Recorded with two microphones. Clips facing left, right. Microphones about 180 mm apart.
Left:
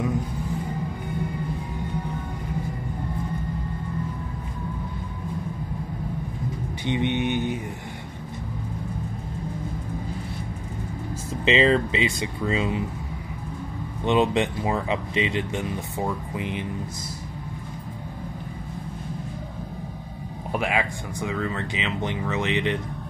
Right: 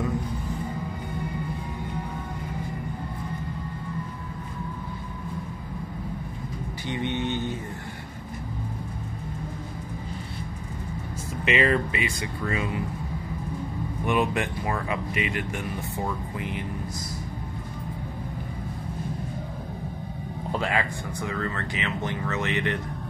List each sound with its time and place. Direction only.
6.9 s speech: 20° left (ahead or behind)
11.4 s speech: 25° left (ahead or behind)
14.0 s speech: 25° left (ahead or behind)
20.5 s speech: 15° left (ahead or behind)